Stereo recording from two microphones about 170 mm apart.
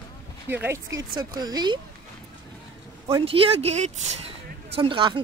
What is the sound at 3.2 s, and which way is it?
Speech, 35° right (ahead or behind).